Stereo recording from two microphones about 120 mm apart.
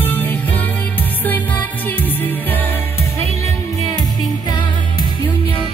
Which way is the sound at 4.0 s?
35° left (ahead or behind).